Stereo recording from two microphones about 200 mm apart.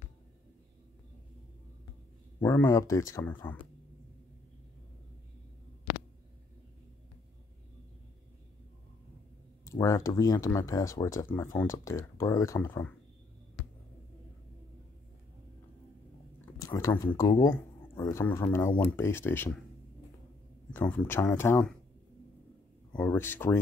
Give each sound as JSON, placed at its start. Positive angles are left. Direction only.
{"t": 2.4, "sound": "speech", "side_deg": 15}
{"t": 9.7, "sound": "speech", "side_deg": 15}
{"t": 16.3, "sound": "speech", "side_deg": 15}
{"t": 20.7, "sound": "speech", "side_deg": 10}
{"t": 23.0, "sound": "speech", "side_deg": 10}